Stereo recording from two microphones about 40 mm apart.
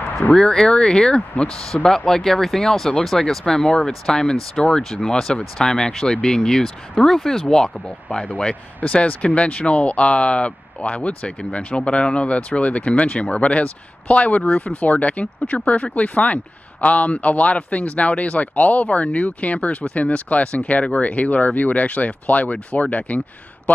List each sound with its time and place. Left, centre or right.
0.3 s speech: centre
8.8 s speech: left